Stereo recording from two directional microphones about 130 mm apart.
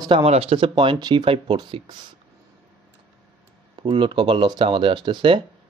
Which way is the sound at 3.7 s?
40° right (ahead or behind).